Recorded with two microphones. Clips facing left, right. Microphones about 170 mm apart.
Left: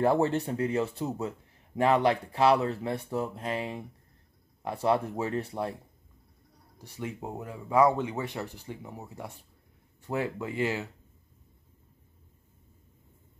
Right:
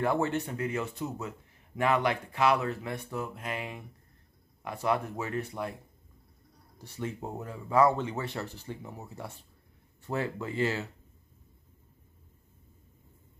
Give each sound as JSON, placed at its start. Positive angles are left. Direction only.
{"t": 0.0, "sound": "speech", "side_deg": 35}
{"t": 6.8, "sound": "speech", "side_deg": 15}